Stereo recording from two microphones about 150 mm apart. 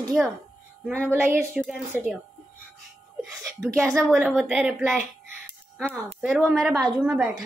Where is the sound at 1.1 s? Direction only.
15° right (ahead or behind).